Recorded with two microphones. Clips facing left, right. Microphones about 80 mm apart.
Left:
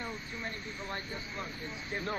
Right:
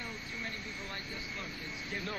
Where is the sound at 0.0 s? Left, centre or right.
Left.